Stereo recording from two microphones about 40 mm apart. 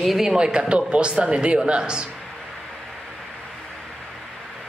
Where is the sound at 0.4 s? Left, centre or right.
Right.